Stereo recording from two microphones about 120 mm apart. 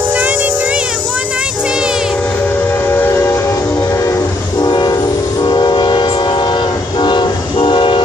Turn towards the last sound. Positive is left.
turn(degrees=45)  # may be behind; listen again after turning